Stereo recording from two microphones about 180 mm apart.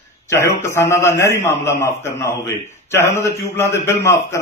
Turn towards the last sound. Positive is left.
turn(degrees=15)  # may be behind; listen again after turning